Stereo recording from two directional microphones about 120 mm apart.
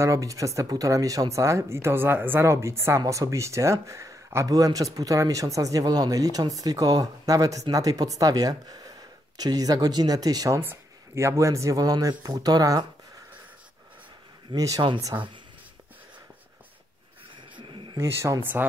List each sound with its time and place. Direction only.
0.0 s speech: 25° right (ahead or behind)
10.6 s speech: 20° right (ahead or behind)
14.5 s speech: 30° right (ahead or behind)
15.1 s speech: 20° right (ahead or behind)
17.6 s a sound: 45° right (ahead or behind)
17.9 s speech: 25° right (ahead or behind)